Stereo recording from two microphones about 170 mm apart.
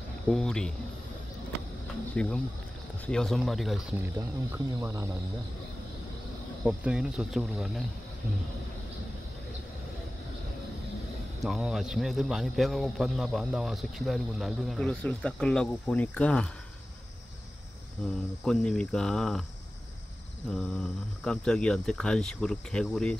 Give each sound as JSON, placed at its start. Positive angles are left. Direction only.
{"t": 0.3, "sound": "a man's voice", "side_deg": 5}
{"t": 2.1, "sound": "a man's voice", "side_deg": 5}
{"t": 4.7, "sound": "speech", "side_deg": -15}
{"t": 6.6, "sound": "a man's voice", "side_deg": -5}
{"t": 11.4, "sound": "a man's voice", "side_deg": 0}
{"t": 18.0, "sound": "a man's voice", "side_deg": 5}
{"t": 20.5, "sound": "a man's voice", "side_deg": 0}